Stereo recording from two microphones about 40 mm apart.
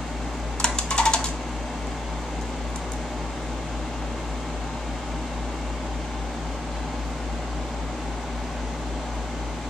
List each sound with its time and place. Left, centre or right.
0.6 s typing: left